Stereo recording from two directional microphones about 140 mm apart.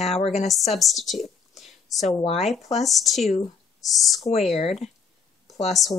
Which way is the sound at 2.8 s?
Centre (ahead or behind).